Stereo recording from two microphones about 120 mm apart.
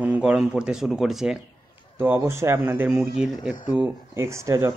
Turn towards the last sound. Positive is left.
turn(degrees=-25)  # may be behind; listen again after turning